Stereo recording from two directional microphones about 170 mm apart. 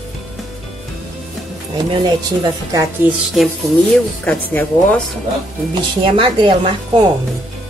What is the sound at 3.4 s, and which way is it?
Speech, centre (ahead or behind).